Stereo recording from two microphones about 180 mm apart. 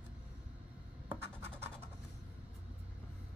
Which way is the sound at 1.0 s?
15° right (ahead or behind).